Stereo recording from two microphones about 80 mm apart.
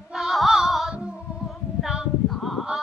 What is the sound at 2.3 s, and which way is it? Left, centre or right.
Honk, centre.